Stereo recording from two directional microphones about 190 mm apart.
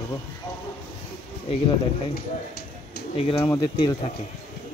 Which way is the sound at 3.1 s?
30° left (ahead or behind).